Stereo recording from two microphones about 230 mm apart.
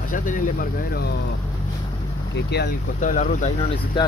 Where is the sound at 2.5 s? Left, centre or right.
Left.